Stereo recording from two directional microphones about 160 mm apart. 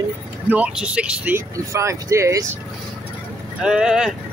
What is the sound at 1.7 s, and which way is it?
Speech, 20° right (ahead or behind).